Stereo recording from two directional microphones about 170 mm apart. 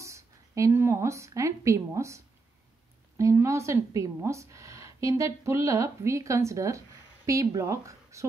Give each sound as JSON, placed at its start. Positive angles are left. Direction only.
{"t": 0.0, "sound": "a woman's voice", "side_deg": -20}